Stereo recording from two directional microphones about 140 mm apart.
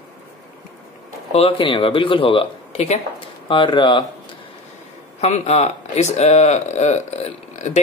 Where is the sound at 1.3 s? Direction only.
45° left (ahead or behind).